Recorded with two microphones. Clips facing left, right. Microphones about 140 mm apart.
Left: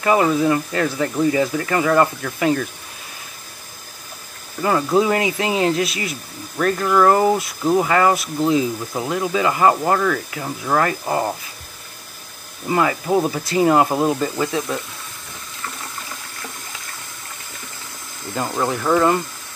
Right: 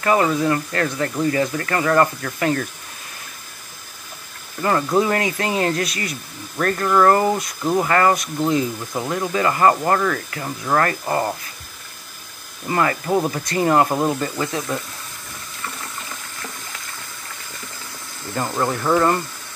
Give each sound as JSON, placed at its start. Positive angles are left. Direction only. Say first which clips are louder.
{"t": 0.0, "sound": "speech", "louder": "left 2 dB", "side_deg": 10}
{"t": 4.6, "sound": "speech", "louder": "left 1 dB", "side_deg": 5}
{"t": 5.0, "sound": "speech", "louder": "left 2 dB", "side_deg": 15}
{"t": 6.5, "sound": "speech", "louder": "left 1 dB", "side_deg": 5}
{"t": 12.6, "sound": "speech", "louder": "left 1 dB", "side_deg": 10}
{"t": 18.5, "sound": "speech", "louder": "left 1 dB", "side_deg": 0}